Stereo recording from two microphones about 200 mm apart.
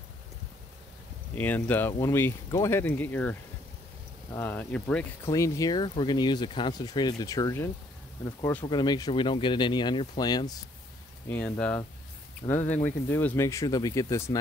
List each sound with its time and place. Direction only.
1.3 s speech: 10° left (ahead or behind)
5.3 s speech: 15° left (ahead or behind)
11.2 s speech: 10° left (ahead or behind)